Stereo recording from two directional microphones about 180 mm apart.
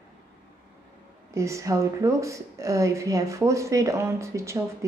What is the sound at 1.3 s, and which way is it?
A woman's voice, 15° right (ahead or behind).